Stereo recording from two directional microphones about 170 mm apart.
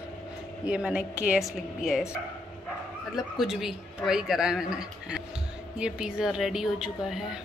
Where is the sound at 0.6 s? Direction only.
5° right (ahead or behind).